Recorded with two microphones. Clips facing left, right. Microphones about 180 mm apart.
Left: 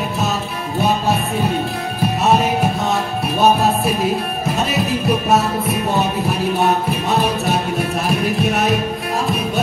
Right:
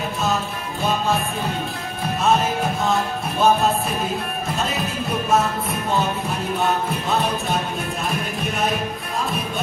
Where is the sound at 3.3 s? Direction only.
70° left (ahead or behind).